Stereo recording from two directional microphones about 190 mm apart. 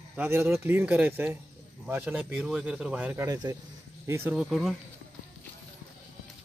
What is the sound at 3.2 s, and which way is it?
A man's voice, 20° right (ahead or behind).